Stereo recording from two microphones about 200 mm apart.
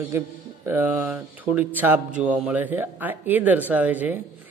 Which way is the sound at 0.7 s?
10° right (ahead or behind).